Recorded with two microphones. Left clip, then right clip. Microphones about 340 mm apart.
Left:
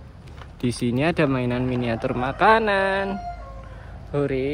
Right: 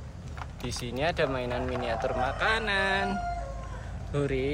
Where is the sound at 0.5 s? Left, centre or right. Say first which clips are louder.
Left 9 dB; centre.